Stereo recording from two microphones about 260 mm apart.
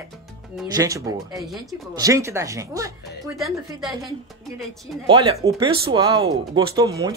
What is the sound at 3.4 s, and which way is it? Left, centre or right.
Speech, centre.